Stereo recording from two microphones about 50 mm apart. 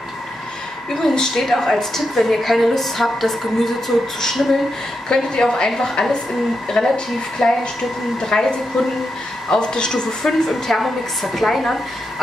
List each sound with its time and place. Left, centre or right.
1.0 s a woman's voice: centre
10.2 s a woman's voice: centre